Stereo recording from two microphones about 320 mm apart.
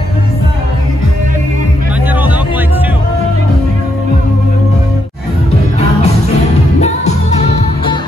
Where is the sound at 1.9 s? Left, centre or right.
Centre.